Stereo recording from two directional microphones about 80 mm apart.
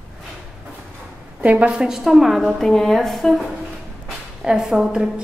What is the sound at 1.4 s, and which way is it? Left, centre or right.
A woman's voice, centre.